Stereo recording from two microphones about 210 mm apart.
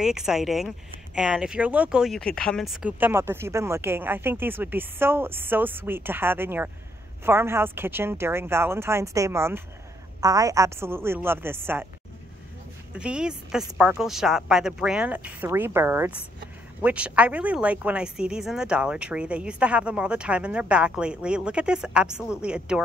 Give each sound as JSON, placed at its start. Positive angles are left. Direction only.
{"t": 0.0, "sound": "speech", "side_deg": 0}
{"t": 12.9, "sound": "speech", "side_deg": -5}